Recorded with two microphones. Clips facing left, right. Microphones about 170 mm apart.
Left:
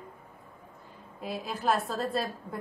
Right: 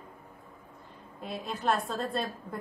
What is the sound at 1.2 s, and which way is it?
Speech, 5° left (ahead or behind).